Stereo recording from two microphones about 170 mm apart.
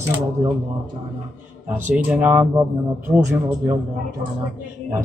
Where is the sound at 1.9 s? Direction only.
10° right (ahead or behind).